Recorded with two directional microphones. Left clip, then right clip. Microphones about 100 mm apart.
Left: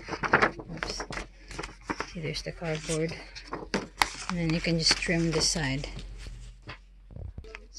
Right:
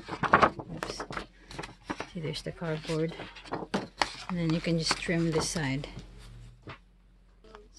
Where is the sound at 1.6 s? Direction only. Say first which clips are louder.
Left 3 dB; 40° right (ahead or behind).